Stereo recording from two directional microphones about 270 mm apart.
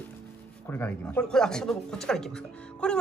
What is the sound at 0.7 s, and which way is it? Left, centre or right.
Speech, centre.